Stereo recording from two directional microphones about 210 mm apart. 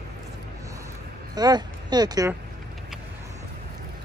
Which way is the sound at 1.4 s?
20° right (ahead or behind).